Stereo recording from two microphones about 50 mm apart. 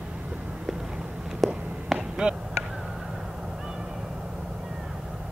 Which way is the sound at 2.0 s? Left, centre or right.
Centre.